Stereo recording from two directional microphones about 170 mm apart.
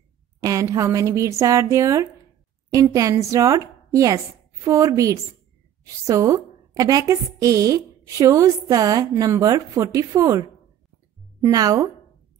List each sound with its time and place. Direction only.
0.4 s a woman's voice: 20° right (ahead or behind)
11.4 s a woman's voice: 20° right (ahead or behind)